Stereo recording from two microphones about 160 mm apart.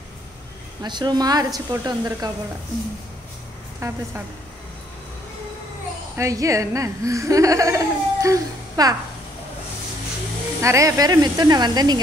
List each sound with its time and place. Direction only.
0.8 s speech: 25° right (ahead or behind)
3.8 s speech: 20° right (ahead or behind)
6.1 s speech: 20° right (ahead or behind)
10.6 s speech: 20° right (ahead or behind)